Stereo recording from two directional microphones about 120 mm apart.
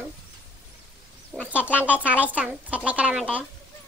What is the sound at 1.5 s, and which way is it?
Speech, 10° right (ahead or behind).